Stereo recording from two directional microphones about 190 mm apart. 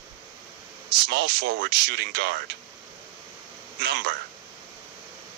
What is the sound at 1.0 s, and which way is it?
Speech, 65° right (ahead or behind).